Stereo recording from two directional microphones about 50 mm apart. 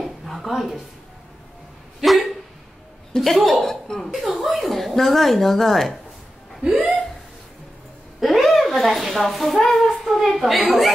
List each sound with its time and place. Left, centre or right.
0.0 s a sound: centre
2.0 s dog: centre
3.2 s a woman's voice: centre
6.6 s speech: centre
8.2 s a sound: centre
10.0 s a woman's voice: centre